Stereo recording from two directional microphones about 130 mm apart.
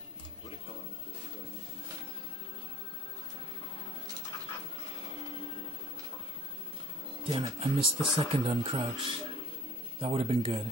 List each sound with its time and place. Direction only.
4.8 s printer: 45° left (ahead or behind)
7.2 s speech: 30° right (ahead or behind)
7.6 s speech: 50° right (ahead or behind)